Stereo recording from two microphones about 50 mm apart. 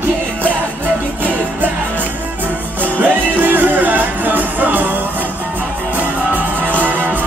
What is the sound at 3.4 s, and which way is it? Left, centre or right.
Music, right.